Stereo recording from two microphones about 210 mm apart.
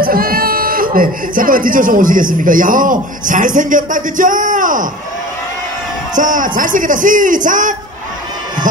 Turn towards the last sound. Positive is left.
turn(degrees=-40)  # may be behind; listen again after turning